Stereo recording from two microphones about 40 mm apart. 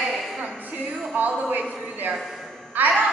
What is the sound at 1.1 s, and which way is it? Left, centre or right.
A man's voice, right.